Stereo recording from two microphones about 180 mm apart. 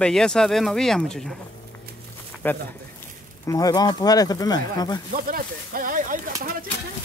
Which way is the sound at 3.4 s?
20° left (ahead or behind).